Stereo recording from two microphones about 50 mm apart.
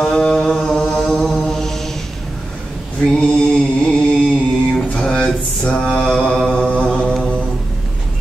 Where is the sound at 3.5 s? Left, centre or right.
Centre.